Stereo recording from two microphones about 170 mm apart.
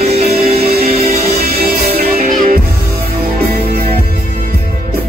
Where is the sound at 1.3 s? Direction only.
60° right (ahead or behind).